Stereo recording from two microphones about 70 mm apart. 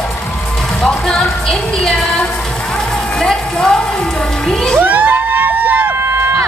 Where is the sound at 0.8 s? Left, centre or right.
Centre.